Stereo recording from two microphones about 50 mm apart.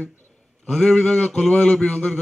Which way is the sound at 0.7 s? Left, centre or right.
Centre.